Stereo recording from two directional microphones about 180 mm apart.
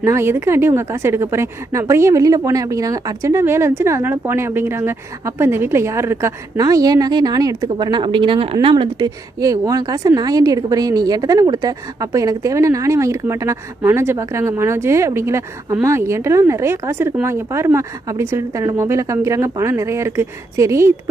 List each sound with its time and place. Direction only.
0.0 s speech: 15° right (ahead or behind)